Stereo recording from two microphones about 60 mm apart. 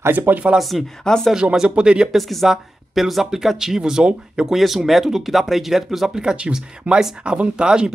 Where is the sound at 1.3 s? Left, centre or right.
Centre.